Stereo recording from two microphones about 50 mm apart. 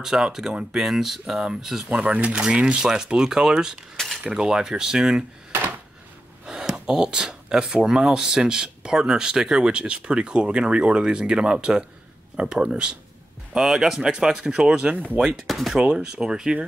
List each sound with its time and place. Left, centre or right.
0.0 s speech: centre
1.9 s speech: centre
2.4 s speech: centre
3.9 s cutlery: centre
4.3 s speech: centre
6.4 s speech: centre
15.2 s speech: centre
16.2 s speech: centre